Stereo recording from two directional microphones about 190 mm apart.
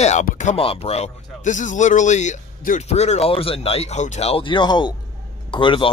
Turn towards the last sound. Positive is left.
turn(degrees=25)  # may be behind; listen again after turning